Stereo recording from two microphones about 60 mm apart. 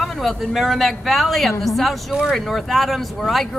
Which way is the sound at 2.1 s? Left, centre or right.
Centre.